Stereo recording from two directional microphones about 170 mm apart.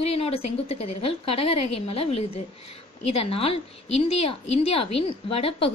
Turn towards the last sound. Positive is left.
turn(degrees=35)  # may be behind; listen again after turning